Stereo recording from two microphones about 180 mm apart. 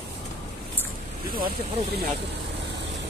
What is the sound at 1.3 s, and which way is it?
Speech, 55° right (ahead or behind).